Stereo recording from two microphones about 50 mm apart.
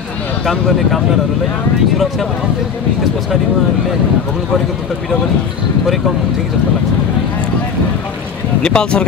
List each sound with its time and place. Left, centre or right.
0.5 s speech: centre
8.6 s speech: centre